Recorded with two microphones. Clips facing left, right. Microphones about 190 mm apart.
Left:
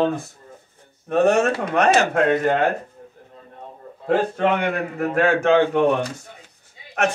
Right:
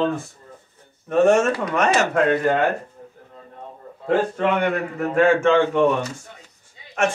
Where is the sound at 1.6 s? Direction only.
55° left (ahead or behind).